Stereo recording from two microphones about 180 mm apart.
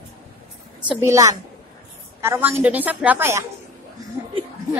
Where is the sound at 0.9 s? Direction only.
15° right (ahead or behind).